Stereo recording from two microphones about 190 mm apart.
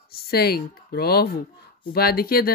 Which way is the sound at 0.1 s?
55° left (ahead or behind).